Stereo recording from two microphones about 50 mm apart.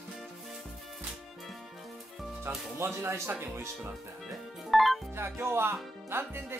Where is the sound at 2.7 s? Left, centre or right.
Right.